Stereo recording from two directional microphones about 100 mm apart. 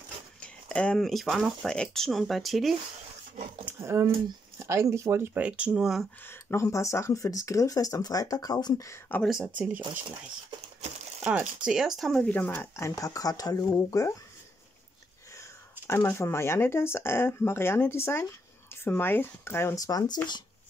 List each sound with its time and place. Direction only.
0.4 s speech: 10° left (ahead or behind)
3.6 s a sound: 25° right (ahead or behind)
4.6 s speech: 30° right (ahead or behind); by 6.0 s 5° right (ahead or behind)
6.2 s speech: 30° left (ahead or behind)
9.3 s speech: 10° right (ahead or behind)
11.2 s speech: 10° right (ahead or behind)
12.3 s speech: 15° left (ahead or behind)
12.7 s speech: 30° left (ahead or behind)
15.9 s speech: 30° left (ahead or behind)